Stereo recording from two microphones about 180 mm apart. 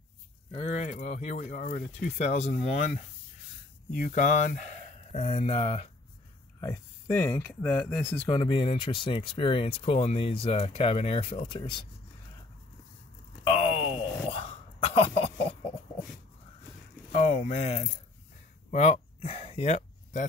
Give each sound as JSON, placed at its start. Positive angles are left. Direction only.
{"t": 0.6, "sound": "speech", "side_deg": 40}
{"t": 6.6, "sound": "speech", "side_deg": 15}
{"t": 8.4, "sound": "speech", "side_deg": 30}
{"t": 13.4, "sound": "a sound", "side_deg": 30}
{"t": 17.1, "sound": "speech", "side_deg": 40}
{"t": 18.7, "sound": "a sound", "side_deg": 40}